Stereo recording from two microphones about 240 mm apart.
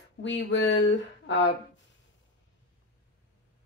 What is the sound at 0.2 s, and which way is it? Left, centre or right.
Speech, left.